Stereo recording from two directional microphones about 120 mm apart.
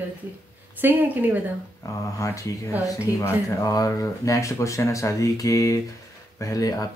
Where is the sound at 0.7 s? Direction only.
15° right (ahead or behind).